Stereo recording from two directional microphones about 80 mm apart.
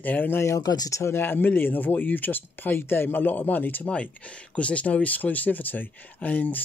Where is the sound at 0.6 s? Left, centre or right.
Left.